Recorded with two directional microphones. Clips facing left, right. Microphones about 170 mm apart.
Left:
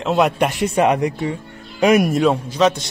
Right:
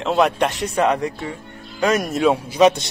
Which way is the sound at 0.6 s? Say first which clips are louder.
Left 4 dB; 15° left (ahead or behind).